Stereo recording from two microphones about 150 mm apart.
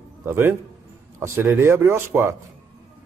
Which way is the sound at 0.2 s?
15° right (ahead or behind).